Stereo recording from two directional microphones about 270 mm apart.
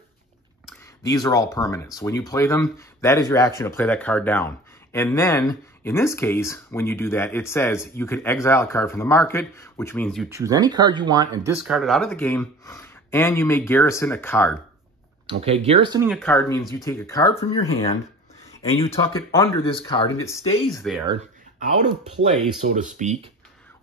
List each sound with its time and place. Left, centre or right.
1.0 s speech: centre
10.3 s speech: centre
11.6 s speech: centre
15.2 s speech: right
16.1 s speech: centre
18.9 s speech: centre
22.5 s speech: right